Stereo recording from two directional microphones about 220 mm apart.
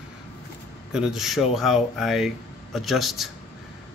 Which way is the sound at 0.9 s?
Centre (ahead or behind).